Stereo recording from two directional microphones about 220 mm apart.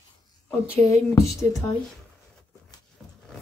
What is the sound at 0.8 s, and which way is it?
Speech, 15° left (ahead or behind).